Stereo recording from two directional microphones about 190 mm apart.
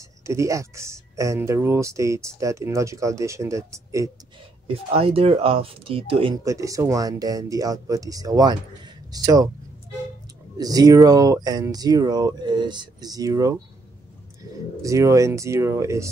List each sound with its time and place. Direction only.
0.2 s speech: 15° right (ahead or behind)
4.9 s speech: 30° right (ahead or behind)
6.4 s speech: 15° right (ahead or behind)
10.6 s speech: 20° right (ahead or behind)
14.8 s speech: 15° right (ahead or behind)